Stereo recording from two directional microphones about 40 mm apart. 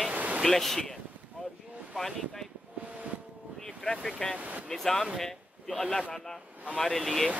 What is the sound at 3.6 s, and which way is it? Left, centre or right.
Vehicle, centre.